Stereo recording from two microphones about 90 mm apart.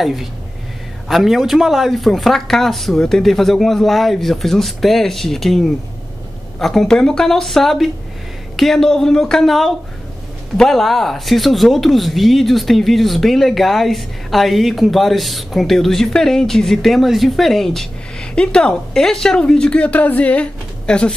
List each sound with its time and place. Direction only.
0.0 s speech: centre (ahead or behind)